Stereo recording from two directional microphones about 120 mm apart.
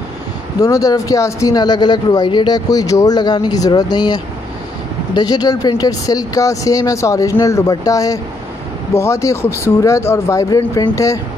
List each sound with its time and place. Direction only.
0.6 s speech: 30° left (ahead or behind)